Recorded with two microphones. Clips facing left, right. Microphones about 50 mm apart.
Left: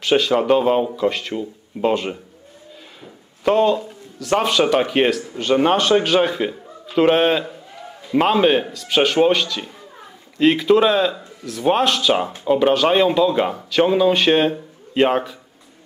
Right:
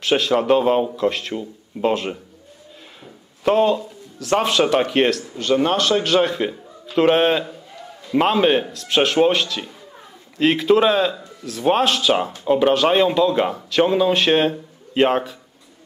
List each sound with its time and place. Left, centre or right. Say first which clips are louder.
0.0 s speech: left 1 dB; centre
3.4 s speech: left 1 dB; centre
5.3 s speech: left 2 dB; centre
6.0 s a man's voice: even; centre